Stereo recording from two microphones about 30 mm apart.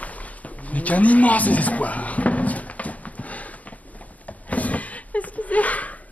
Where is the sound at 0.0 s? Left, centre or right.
Left.